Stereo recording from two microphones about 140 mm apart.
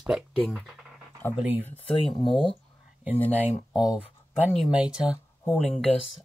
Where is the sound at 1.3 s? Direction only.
10° right (ahead or behind).